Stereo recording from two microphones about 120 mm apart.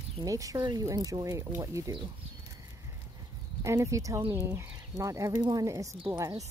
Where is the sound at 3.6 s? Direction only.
25° right (ahead or behind).